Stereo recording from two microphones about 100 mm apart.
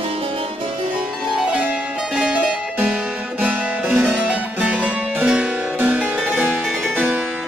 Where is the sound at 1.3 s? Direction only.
10° right (ahead or behind).